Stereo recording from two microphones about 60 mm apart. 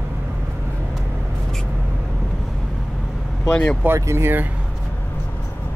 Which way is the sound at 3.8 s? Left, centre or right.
Right.